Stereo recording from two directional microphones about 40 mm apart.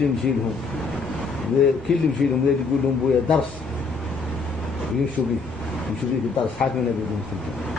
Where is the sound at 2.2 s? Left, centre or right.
Centre.